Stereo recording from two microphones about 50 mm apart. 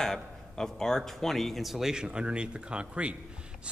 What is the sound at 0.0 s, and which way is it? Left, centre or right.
A man's voice, centre.